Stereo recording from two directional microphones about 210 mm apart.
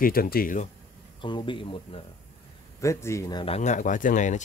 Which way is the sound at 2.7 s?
15° left (ahead or behind).